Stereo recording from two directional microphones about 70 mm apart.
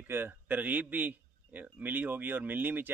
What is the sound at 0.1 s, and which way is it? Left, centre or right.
A man's voice, right.